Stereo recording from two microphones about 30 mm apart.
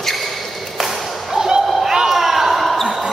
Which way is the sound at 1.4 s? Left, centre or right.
Centre.